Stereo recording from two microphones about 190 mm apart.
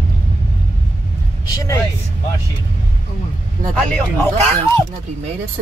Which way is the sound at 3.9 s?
10° left (ahead or behind).